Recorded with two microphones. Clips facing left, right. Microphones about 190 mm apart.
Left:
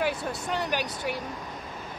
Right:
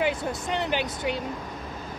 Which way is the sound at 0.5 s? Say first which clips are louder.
Right 2 dB; 20° right (ahead or behind).